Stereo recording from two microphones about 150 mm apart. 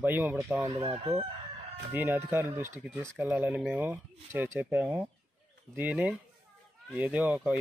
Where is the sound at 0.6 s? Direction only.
25° right (ahead or behind).